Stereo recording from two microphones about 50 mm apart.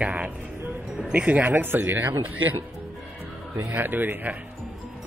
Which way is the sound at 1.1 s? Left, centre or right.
Right.